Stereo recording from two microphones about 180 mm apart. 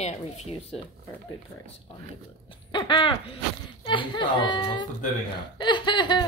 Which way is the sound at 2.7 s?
25° left (ahead or behind).